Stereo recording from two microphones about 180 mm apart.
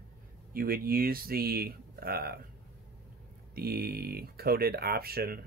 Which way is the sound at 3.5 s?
60° right (ahead or behind).